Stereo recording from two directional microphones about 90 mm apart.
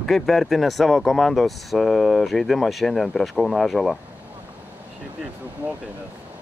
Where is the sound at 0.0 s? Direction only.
Centre (ahead or behind).